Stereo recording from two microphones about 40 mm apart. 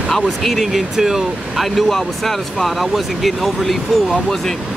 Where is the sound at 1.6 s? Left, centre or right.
Centre.